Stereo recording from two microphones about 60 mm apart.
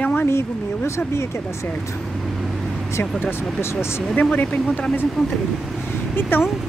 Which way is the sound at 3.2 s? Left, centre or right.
Left.